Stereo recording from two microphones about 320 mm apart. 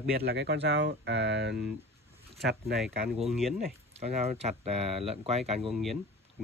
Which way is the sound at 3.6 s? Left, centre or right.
Centre.